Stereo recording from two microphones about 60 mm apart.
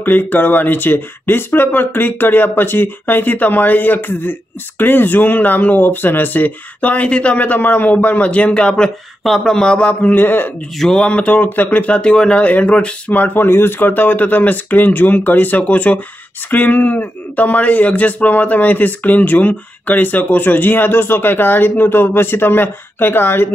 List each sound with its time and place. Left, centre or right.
0.0 s speech: left; by 8.9 s centre
9.2 s a man's voice: centre
10.1 s speech: left
10.8 s a man's voice: centre
11.1 s speech: left
13.2 s speech: left